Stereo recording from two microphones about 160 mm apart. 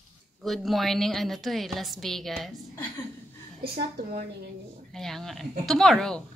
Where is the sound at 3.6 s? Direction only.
85° right.